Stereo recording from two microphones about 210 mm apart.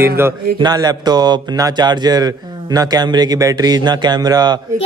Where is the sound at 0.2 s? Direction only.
10° right (ahead or behind).